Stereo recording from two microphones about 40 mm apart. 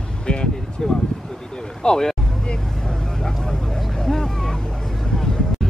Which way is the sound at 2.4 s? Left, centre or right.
Centre.